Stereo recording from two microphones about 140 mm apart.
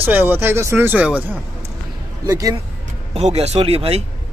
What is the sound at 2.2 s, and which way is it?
Speech, 25° right (ahead or behind).